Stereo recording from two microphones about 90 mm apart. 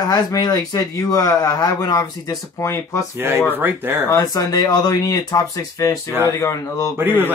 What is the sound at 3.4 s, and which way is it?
Speech, 20° right (ahead or behind).